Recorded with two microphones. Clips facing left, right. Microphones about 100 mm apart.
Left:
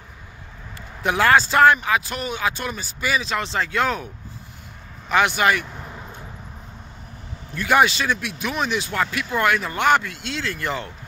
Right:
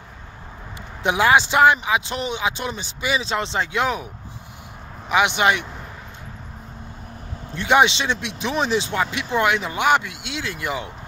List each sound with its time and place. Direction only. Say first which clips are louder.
1.0 s speech: even; 15° right (ahead or behind)
5.1 s speech: even; 20° right (ahead or behind)
7.5 s speech: right 1 dB; 25° right (ahead or behind)